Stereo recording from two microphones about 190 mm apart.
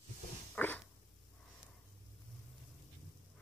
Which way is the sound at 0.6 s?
10° left (ahead or behind).